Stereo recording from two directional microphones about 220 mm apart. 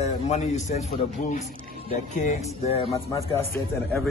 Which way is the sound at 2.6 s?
25° left (ahead or behind).